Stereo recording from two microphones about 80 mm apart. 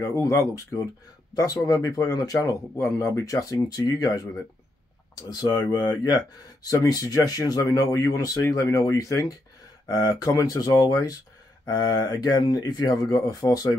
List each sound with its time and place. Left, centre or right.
0.0 s speech: left
5.3 s speech: left